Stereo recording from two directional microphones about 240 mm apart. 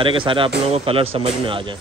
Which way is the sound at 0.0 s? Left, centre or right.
Right.